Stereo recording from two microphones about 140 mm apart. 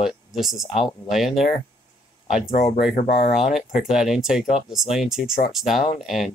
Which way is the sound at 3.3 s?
Centre (ahead or behind).